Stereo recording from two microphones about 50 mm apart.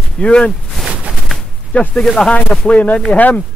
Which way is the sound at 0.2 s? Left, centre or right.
Centre.